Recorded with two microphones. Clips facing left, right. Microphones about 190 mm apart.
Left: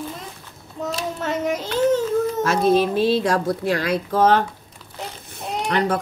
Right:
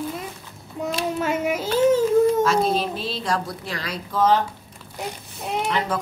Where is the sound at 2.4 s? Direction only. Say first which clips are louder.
Left 3 dB; 55° left (ahead or behind).